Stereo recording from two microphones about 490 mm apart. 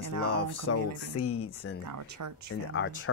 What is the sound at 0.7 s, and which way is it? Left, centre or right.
Speech, left.